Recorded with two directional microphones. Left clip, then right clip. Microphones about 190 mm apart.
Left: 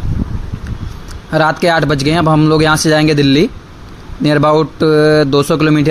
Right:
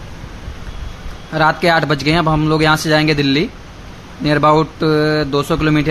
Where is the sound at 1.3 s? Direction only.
35° left (ahead or behind).